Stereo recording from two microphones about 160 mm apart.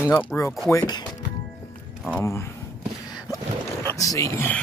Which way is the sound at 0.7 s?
25° left (ahead or behind).